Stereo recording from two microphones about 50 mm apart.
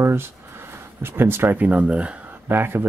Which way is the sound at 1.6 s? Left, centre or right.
Right.